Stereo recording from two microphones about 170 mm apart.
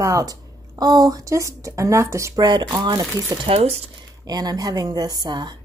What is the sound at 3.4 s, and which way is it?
Speech, 35° right (ahead or behind).